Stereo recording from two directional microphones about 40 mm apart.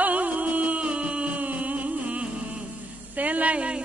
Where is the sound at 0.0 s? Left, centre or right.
Right.